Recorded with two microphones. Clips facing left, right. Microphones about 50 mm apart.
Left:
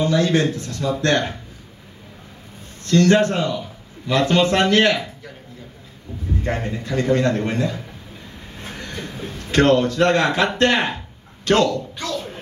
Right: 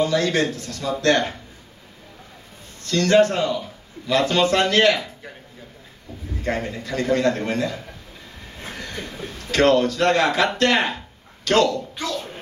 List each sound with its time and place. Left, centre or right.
0.0 s a man's voice: left
2.8 s a man's voice: left
6.4 s a man's voice: left
9.0 s a man's voice: left
12.1 s music: centre